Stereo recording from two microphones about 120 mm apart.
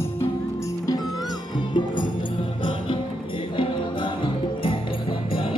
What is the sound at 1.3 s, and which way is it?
Music, 40° left (ahead or behind).